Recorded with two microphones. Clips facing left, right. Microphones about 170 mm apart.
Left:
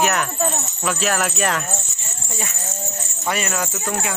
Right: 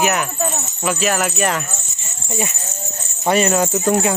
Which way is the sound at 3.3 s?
30° right (ahead or behind).